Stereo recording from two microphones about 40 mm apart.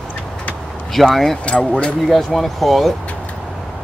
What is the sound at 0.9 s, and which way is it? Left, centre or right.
Speech, centre.